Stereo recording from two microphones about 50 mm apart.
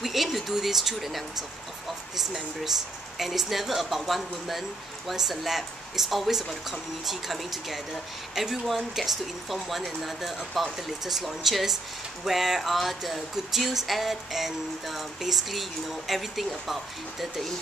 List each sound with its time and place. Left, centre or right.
0.0 s speech: centre